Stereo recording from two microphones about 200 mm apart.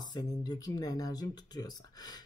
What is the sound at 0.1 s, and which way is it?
Speech, 20° left (ahead or behind).